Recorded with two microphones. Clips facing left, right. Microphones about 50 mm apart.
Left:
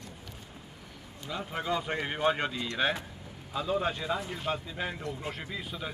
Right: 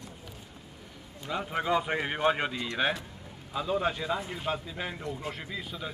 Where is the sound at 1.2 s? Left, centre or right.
Centre.